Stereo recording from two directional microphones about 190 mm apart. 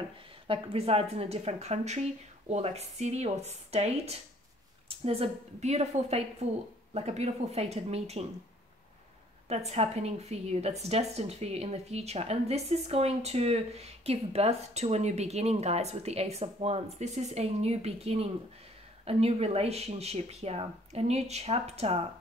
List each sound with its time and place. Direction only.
0.5 s a woman's voice: 30° right (ahead or behind)
9.5 s a woman's voice: 35° right (ahead or behind)